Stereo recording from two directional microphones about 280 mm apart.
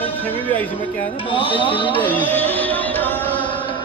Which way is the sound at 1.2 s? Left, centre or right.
Centre.